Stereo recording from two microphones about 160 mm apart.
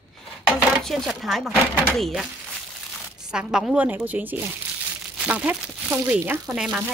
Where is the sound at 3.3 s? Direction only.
5° right (ahead or behind).